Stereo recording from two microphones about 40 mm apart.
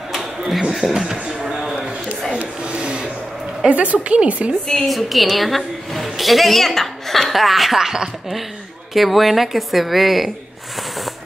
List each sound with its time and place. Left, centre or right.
0.7 s speech: centre
1.4 s a sound: centre
2.3 s a sound: right
3.6 s a woman's voice: right
4.8 s a woman's voice: centre
8.9 s a woman's voice: centre